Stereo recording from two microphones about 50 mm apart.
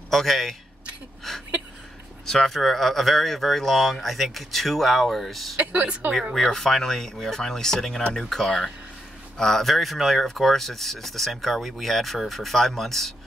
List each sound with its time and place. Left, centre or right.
0.1 s speech: centre
2.2 s speech: centre
5.6 s speech: right
6.3 s speech: centre